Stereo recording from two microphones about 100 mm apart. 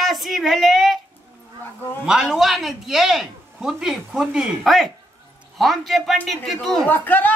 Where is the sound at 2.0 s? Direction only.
5° right (ahead or behind).